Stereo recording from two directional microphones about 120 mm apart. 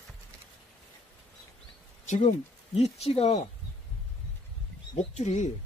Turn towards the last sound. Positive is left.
turn(degrees=70)  # may be behind; listen again after turning